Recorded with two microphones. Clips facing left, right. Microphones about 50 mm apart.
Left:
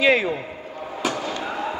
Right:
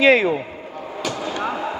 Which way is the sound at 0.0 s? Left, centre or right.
Centre.